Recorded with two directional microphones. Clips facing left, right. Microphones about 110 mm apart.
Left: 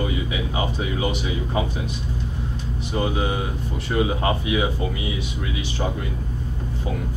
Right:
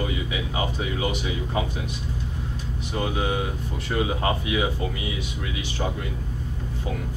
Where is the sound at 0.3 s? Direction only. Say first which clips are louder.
Left 2 dB; 25° left (ahead or behind).